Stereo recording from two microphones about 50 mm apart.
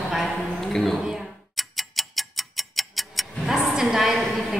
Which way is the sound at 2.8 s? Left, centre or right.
Centre.